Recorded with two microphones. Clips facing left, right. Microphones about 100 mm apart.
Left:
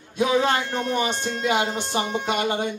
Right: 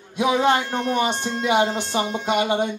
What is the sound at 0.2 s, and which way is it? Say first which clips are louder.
A woman's voice: right 2 dB; 15° right (ahead or behind).